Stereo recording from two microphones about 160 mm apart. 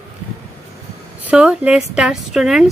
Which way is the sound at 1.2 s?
10° right (ahead or behind).